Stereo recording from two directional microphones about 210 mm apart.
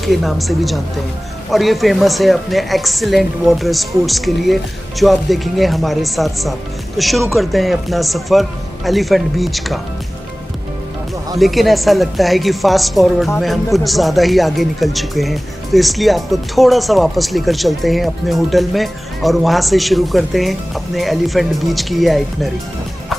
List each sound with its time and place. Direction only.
0.0 s speech: centre (ahead or behind)
11.3 s speech: centre (ahead or behind)